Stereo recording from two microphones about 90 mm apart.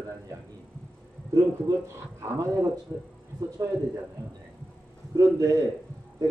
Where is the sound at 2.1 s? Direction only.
35° right (ahead or behind).